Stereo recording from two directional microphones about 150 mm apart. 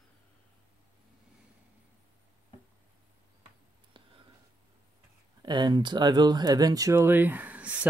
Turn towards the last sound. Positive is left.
turn(degrees=-10)  # may be behind; listen again after turning